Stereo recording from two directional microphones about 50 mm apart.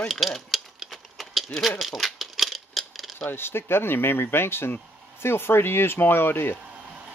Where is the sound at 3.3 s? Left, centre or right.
Left.